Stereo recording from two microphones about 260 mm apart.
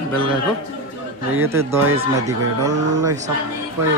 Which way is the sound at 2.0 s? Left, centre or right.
Centre.